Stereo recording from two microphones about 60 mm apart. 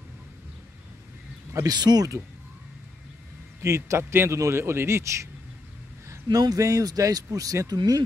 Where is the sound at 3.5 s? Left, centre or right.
Right.